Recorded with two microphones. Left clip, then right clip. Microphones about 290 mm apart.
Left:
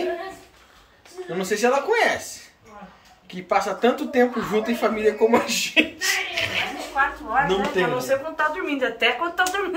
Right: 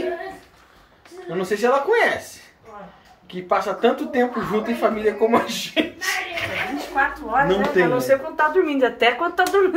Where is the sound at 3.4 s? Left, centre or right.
Centre.